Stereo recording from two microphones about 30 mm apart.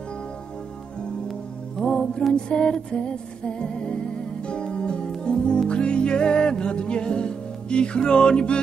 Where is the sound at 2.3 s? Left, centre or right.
Left.